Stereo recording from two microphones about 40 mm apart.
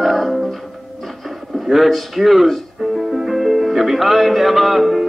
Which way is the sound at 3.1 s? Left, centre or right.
Centre.